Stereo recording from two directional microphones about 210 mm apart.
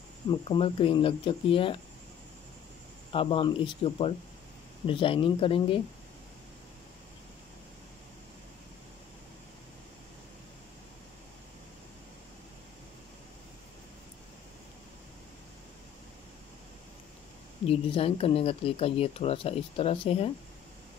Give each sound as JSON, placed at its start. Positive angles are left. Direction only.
{"t": 0.3, "sound": "speech", "side_deg": 25}
{"t": 3.1, "sound": "speech", "side_deg": 25}
{"t": 17.6, "sound": "speech", "side_deg": 25}